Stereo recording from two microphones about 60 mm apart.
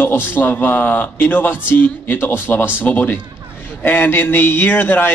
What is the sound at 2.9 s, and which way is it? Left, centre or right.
A man's voice, left.